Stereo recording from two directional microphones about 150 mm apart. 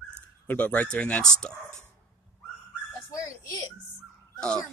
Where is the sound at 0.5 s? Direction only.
10° left (ahead or behind).